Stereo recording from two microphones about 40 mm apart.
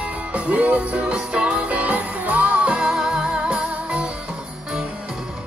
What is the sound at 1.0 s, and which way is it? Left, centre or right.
Music, right.